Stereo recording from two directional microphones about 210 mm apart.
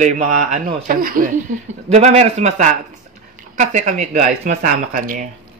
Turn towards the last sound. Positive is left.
turn(degrees=-40)  # may be behind; listen again after turning